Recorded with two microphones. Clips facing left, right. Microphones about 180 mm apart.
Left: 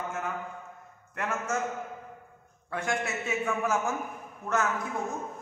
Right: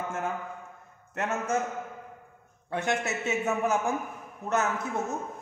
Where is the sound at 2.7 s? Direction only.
20° right (ahead or behind).